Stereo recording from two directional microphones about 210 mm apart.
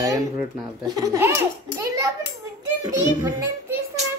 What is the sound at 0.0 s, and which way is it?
A child's voice, 15° right (ahead or behind).